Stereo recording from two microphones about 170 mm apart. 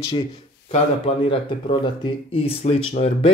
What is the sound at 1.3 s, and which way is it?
Speech, 30° left (ahead or behind).